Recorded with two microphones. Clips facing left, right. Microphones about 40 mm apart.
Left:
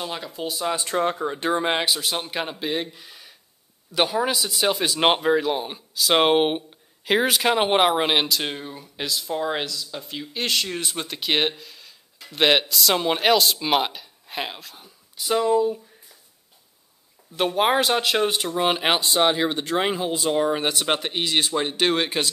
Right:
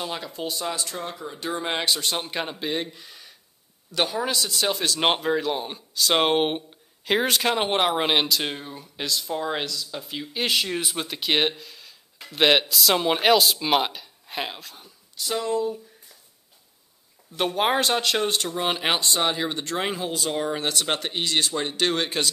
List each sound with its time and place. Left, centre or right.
0.0 s speech: centre
0.8 s speech: left
1.7 s speech: centre
17.4 s speech: centre